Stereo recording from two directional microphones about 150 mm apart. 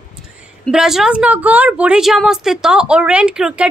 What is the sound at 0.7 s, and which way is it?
A woman's voice, 5° right (ahead or behind).